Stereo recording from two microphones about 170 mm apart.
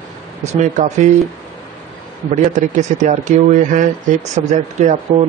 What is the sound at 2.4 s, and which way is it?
Speech, 45° right (ahead or behind).